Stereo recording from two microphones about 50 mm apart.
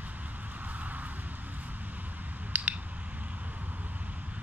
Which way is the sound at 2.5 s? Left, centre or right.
Right.